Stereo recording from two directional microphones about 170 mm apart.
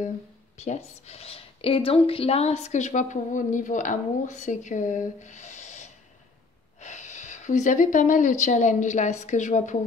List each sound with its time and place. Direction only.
0.6 s speech: 40° left (ahead or behind)